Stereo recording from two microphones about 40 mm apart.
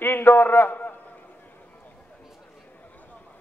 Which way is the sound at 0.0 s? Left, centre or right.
Left.